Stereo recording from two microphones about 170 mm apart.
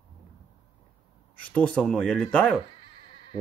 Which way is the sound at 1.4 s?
10° left (ahead or behind).